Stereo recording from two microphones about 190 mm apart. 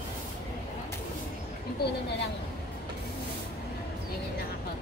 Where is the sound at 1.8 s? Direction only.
60° left (ahead or behind).